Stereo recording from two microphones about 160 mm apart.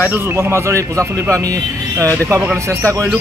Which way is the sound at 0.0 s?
15° right (ahead or behind).